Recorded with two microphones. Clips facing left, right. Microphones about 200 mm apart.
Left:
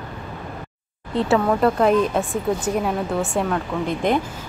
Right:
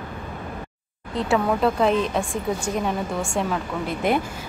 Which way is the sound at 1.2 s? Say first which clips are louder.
Left 3 dB; centre (ahead or behind).